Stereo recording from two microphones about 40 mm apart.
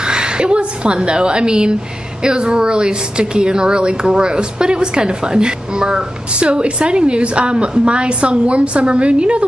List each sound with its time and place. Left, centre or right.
0.0 s a woman's voice: right